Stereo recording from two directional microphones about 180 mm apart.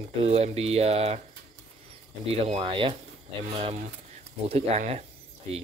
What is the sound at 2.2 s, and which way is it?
Speech, 35° right (ahead or behind).